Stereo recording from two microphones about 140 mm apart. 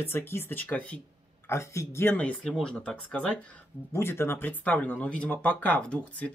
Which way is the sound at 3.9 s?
15° left (ahead or behind).